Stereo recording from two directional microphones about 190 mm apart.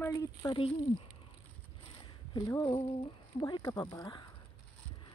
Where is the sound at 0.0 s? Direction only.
15° left (ahead or behind).